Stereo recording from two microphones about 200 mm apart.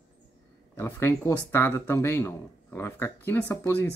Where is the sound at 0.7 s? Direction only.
10° left (ahead or behind).